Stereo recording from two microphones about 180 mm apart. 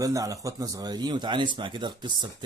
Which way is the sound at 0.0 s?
20° right (ahead or behind).